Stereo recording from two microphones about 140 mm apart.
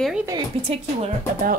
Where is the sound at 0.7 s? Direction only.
50° right (ahead or behind).